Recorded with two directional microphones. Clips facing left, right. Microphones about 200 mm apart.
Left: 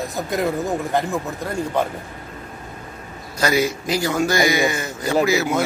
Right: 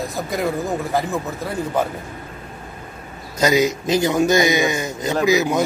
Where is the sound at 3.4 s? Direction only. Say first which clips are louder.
Right 3 dB; 20° right (ahead or behind).